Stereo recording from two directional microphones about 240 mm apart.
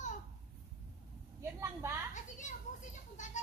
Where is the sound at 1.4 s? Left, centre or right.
Centre.